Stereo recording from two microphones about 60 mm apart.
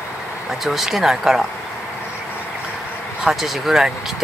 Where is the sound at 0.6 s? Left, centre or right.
Centre.